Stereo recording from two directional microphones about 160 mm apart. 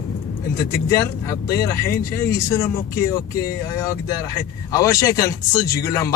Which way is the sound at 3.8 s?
20° left (ahead or behind).